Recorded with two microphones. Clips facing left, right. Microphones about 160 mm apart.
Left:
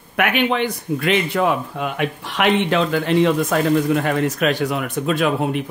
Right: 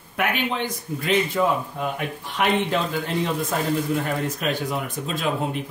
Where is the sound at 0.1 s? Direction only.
75° left (ahead or behind).